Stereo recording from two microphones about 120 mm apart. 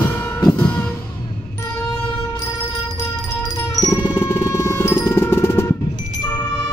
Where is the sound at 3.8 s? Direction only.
25° left (ahead or behind).